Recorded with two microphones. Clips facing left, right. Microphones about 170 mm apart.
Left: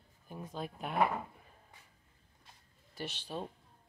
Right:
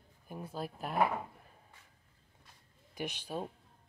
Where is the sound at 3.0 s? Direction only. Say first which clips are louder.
Right 2 dB; 10° right (ahead or behind).